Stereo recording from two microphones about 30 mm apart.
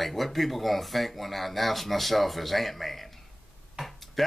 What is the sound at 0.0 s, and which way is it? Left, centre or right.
Speech, centre.